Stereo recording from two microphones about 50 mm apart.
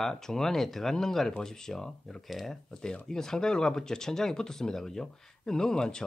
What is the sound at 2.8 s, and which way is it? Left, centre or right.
Speech, centre.